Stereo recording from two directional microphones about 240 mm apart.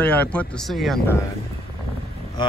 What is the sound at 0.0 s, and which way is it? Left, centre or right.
Speech, centre.